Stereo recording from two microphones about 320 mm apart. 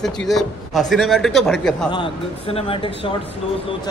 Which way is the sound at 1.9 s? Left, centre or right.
Centre.